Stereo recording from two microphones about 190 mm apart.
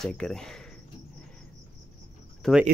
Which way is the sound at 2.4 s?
Centre (ahead or behind).